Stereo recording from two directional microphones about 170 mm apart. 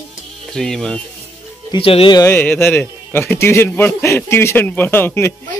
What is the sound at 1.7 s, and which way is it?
Speech, 35° left (ahead or behind).